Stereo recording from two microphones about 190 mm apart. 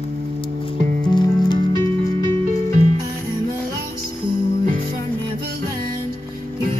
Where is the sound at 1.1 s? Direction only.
25° left (ahead or behind).